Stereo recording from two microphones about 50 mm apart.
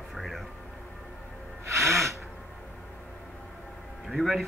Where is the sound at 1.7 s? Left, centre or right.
Right.